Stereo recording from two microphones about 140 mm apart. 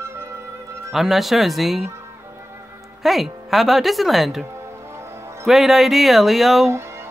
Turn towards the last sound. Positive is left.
turn(degrees=-20)  # may be behind; listen again after turning